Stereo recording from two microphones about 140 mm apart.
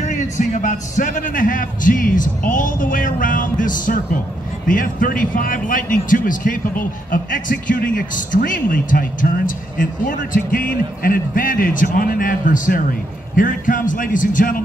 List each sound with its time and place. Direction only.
0.0 s a man's voice: 65° left (ahead or behind); by 14.6 s 85° left